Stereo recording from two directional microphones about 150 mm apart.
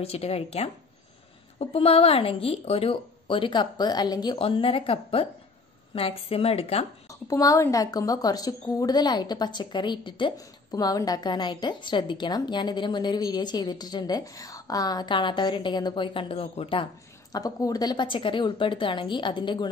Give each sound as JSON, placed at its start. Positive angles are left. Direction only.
{"t": 0.0, "sound": "speech", "side_deg": 40}
{"t": 7.1, "sound": "a woman's voice", "side_deg": 25}
{"t": 17.3, "sound": "speech", "side_deg": 25}